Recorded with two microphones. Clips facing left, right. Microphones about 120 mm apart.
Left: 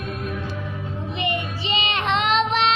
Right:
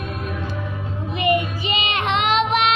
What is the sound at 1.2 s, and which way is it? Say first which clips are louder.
Child singing: right 8 dB; 30° left (ahead or behind).